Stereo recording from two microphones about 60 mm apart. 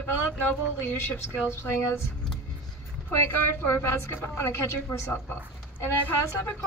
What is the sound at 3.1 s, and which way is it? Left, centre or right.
A woman's voice, left.